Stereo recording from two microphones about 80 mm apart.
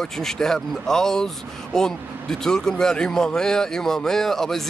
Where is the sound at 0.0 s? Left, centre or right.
Centre.